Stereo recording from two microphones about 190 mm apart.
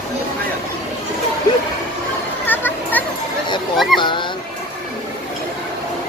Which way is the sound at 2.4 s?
10° left (ahead or behind).